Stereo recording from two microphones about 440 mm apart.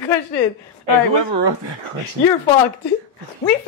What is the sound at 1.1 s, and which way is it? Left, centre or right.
Speech, right.